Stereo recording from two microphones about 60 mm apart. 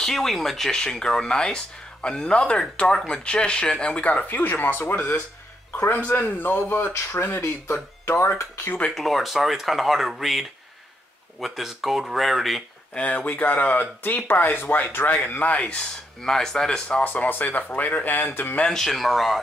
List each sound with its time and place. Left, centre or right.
0.0 s speech: centre; by 4.9 s left
4.9 s speech: left
8.0 s a sound: left
8.9 s speech: centre
12.9 s speech: left
16.2 s speech: centre
17.0 s speech: left
18.7 s speech: centre